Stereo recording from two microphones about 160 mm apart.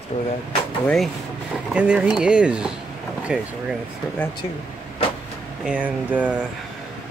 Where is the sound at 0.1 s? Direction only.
40° left (ahead or behind).